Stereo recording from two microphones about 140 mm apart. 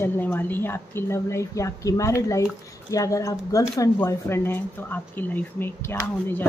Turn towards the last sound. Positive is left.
turn(degrees=15)  # may be behind; listen again after turning